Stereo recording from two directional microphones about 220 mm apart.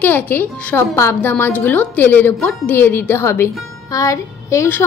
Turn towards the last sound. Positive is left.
turn(degrees=10)  # may be behind; listen again after turning